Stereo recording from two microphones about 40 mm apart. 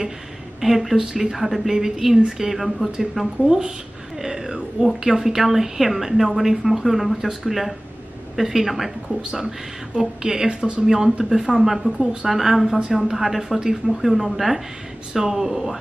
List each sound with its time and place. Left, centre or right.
0.6 s speech: centre
4.3 s cat: centre
4.8 s a woman's voice: centre
9.9 s speech: centre
10.9 s a woman's voice: centre
13.8 s a woman's voice: centre